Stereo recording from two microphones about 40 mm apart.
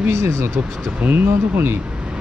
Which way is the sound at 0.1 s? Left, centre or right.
Right.